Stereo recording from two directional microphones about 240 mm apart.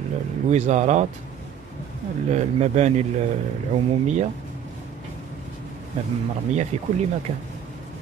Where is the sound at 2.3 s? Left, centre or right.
Right.